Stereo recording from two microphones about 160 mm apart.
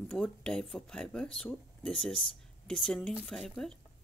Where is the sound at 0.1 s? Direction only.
5° left (ahead or behind).